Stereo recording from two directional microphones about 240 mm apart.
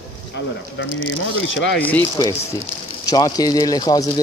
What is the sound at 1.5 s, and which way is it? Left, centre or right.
Speech, left.